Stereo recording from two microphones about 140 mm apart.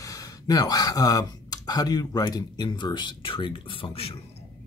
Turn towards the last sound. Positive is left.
turn(degrees=40)  # may be behind; listen again after turning